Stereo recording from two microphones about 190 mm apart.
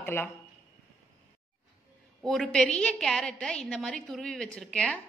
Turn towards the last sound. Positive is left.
turn(degrees=5)  # may be behind; listen again after turning